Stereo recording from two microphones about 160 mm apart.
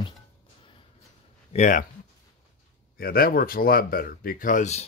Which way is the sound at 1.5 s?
50° left (ahead or behind).